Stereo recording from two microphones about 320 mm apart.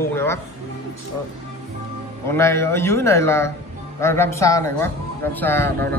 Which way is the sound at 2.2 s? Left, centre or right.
Centre.